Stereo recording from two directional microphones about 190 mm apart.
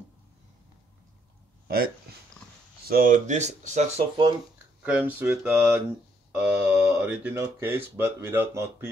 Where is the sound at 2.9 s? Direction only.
45° right (ahead or behind).